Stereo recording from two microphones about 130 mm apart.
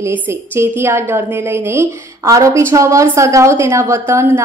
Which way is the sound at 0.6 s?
20° right (ahead or behind).